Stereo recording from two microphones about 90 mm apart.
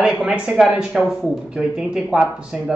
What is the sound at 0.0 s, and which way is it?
Speech, 10° right (ahead or behind).